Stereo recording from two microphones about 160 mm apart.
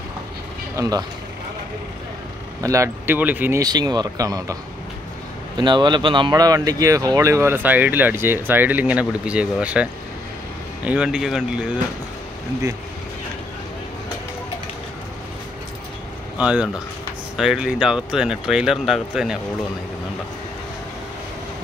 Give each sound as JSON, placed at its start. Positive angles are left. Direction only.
{"t": 0.7, "sound": "speech", "side_deg": -25}
{"t": 2.6, "sound": "speech", "side_deg": -20}
{"t": 3.6, "sound": "speech", "side_deg": -25}
{"t": 5.6, "sound": "speech", "side_deg": -30}
{"t": 16.3, "sound": "speech", "side_deg": -5}